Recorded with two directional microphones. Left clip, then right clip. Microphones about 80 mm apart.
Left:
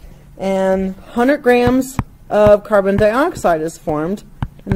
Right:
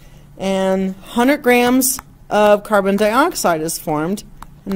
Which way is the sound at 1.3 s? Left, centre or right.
Right.